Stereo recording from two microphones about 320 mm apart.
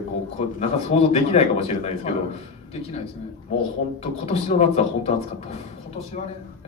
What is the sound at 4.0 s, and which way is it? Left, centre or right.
Speech, centre.